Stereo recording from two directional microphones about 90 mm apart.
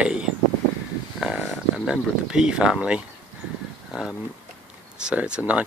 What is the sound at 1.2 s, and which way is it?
Speech, 10° right (ahead or behind).